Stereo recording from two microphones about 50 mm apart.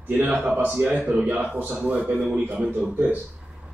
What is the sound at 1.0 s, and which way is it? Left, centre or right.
A man's voice, right.